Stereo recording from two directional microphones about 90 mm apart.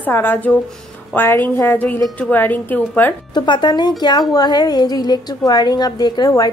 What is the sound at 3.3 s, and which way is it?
A woman's voice, 60° left (ahead or behind).